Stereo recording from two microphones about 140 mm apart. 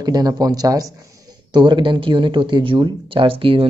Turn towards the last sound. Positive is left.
turn(degrees=-40)  # may be behind; listen again after turning